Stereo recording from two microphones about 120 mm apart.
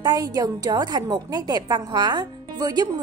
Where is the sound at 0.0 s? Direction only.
35° right (ahead or behind).